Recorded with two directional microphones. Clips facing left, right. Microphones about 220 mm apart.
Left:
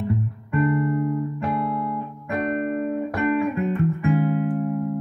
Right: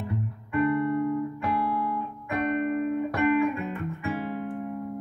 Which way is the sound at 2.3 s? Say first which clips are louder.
Left 2 dB; 40° left (ahead or behind).